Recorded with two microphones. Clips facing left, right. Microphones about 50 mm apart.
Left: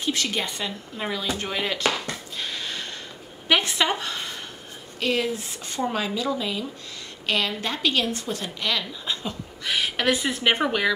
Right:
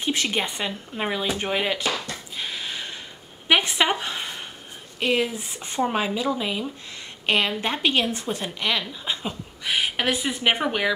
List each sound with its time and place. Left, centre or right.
0.0 s a woman's voice: right
2.3 s a sound: centre
5.0 s a woman's voice: centre